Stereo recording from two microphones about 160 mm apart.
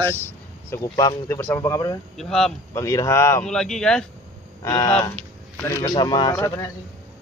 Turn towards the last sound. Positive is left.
turn(degrees=20)  # may be behind; listen again after turning